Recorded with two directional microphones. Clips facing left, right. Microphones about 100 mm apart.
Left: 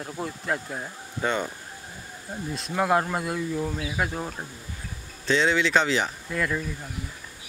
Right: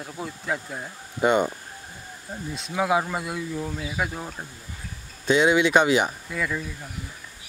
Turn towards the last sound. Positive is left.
turn(degrees=0)  # may be behind; listen again after turning